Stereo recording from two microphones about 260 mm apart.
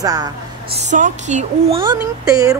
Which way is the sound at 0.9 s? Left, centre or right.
Right.